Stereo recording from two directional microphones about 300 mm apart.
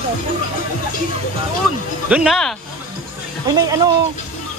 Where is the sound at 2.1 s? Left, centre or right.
Centre.